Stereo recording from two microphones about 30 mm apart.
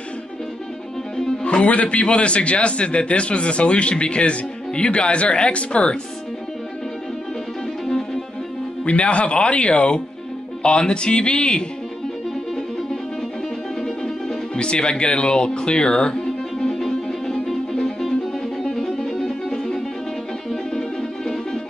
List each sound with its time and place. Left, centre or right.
1.4 s music: left
1.7 s a man's voice: left
8.8 s a man's voice: left
13.8 s music: left
16.8 s music: centre
18.7 s music: centre